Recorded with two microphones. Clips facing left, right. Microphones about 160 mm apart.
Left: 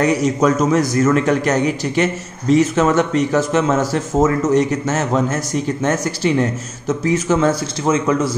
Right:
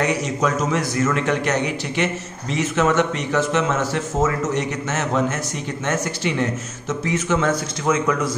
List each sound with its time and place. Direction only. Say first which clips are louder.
0.0 s a man's voice: left 6 dB; 40° left (ahead or behind)